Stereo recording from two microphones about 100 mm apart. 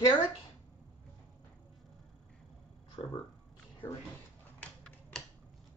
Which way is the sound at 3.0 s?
60° left (ahead or behind).